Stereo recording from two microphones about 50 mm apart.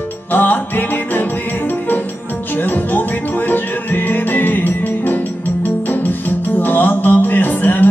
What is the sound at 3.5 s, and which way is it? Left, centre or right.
Music, left.